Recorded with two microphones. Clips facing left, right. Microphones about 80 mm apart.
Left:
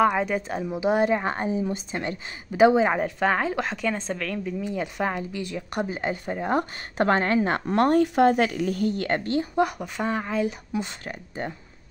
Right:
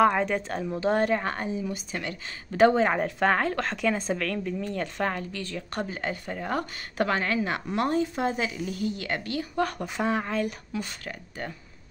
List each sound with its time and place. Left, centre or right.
0.1 s a woman's voice: centre; by 2.1 s left
2.5 s a woman's voice: centre
7.1 s a woman's voice: left
9.6 s a woman's voice: centre
9.9 s speech: centre
10.4 s speech: centre